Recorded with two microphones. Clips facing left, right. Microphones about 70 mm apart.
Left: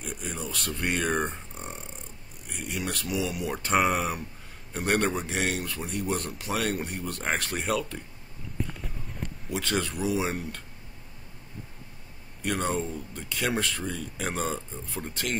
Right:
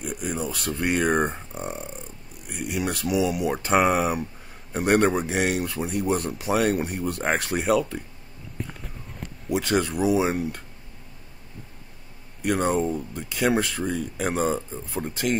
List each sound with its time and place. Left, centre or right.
0.0 s speech: centre
9.5 s speech: centre
12.4 s speech: centre